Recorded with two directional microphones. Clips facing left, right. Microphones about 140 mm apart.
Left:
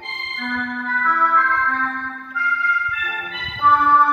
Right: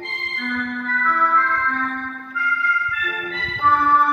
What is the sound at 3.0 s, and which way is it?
Music, 25° left (ahead or behind).